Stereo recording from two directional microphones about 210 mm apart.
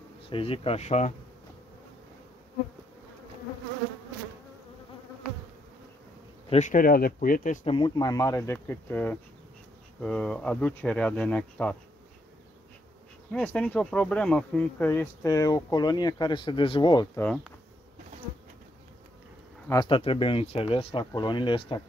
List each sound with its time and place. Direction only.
0.3 s speech: 25° left (ahead or behind)
6.5 s speech: 35° left (ahead or behind)
7.7 s speech: 20° left (ahead or behind)
13.3 s speech: 5° left (ahead or behind)
17.2 s speech: 5° left (ahead or behind)
19.7 s speech: 20° left (ahead or behind)